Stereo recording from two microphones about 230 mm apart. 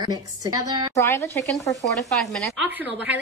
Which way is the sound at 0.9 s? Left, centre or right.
Centre.